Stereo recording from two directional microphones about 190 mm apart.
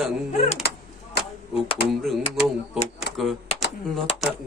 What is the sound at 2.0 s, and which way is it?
Speech, centre (ahead or behind).